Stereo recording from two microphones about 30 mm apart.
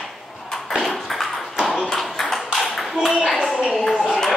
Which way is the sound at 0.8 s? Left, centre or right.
Centre.